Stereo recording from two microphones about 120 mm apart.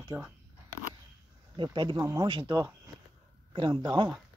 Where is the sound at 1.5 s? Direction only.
40° right (ahead or behind).